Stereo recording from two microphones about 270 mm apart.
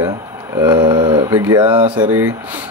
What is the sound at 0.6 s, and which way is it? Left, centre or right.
A man's voice, centre.